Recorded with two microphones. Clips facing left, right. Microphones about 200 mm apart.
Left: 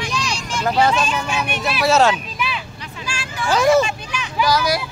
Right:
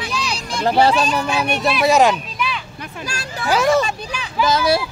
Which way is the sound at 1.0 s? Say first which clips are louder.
Right 3 dB; 35° right (ahead or behind).